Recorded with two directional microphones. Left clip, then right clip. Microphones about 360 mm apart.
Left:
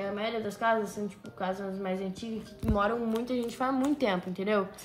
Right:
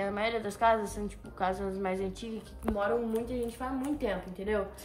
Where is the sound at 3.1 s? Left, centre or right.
Centre.